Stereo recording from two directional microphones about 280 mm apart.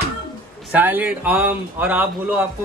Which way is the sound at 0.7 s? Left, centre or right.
Centre.